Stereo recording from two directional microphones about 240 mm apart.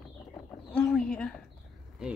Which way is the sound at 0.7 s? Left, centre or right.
Centre.